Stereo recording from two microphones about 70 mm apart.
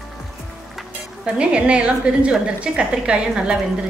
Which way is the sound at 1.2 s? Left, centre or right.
Centre.